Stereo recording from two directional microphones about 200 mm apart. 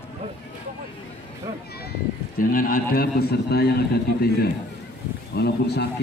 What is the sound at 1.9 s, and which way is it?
A man's voice, 45° left (ahead or behind).